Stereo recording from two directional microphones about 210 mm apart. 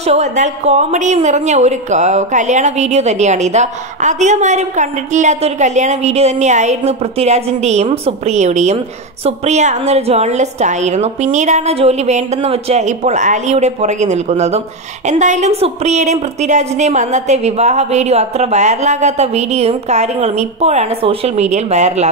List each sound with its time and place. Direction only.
0.0 s a woman's voice: 30° right (ahead or behind)